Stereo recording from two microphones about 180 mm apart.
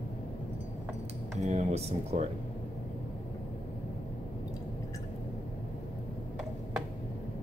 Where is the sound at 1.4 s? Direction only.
35° right (ahead or behind).